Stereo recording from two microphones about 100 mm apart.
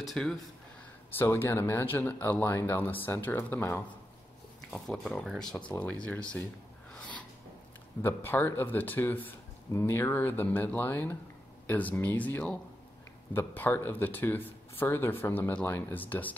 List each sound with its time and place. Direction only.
0.0 s speech: 5° left (ahead or behind)
1.1 s speech: 20° left (ahead or behind)
5.0 s speech: centre (ahead or behind)
5.6 s speech: 45° left (ahead or behind)
5.9 s speech: 10° left (ahead or behind)
8.0 s speech: 20° left (ahead or behind)